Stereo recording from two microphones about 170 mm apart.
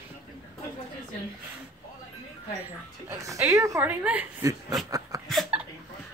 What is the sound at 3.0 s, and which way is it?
Speech, 20° right (ahead or behind).